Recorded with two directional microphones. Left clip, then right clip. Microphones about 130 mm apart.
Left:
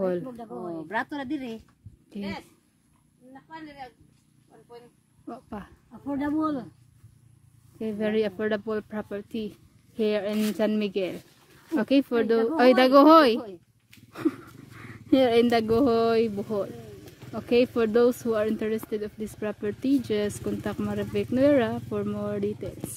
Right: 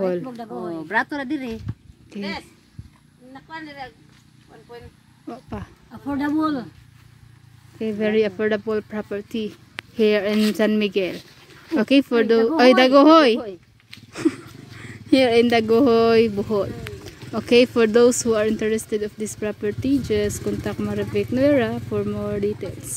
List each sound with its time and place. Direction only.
0.3 s speech: 10° right (ahead or behind)
0.7 s speech: 15° left (ahead or behind)
3.4 s a woman's voice: 30° left (ahead or behind)
5.2 s speech: 20° left (ahead or behind)
5.9 s speech: 10° right (ahead or behind)
7.8 s speech: 15° left (ahead or behind)
9.9 s speech: centre (ahead or behind); by 22.7 s 15° left (ahead or behind)